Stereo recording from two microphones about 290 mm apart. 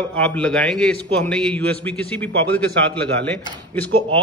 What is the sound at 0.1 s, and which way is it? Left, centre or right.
A man's voice, centre.